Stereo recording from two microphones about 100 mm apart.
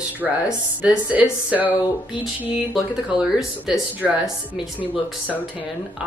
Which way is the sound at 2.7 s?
5° right (ahead or behind).